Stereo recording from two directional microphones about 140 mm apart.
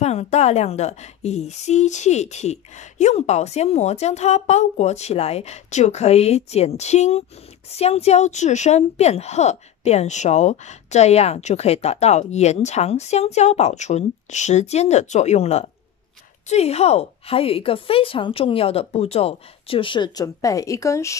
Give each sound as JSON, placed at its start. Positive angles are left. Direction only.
{"t": 0.0, "sound": "a woman's voice", "side_deg": 50}